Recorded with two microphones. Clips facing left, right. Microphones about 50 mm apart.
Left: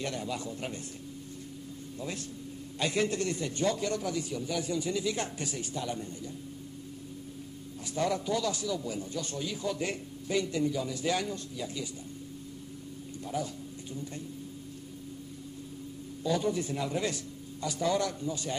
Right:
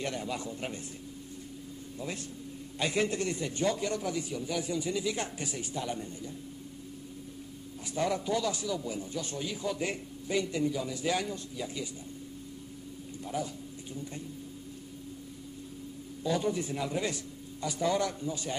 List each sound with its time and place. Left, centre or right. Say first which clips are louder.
0.0 s a man's voice: even; centre
2.8 s a man's voice: even; centre
7.8 s a man's voice: even; centre
13.2 s speech: even; centre
16.3 s a man's voice: left 1 dB; centre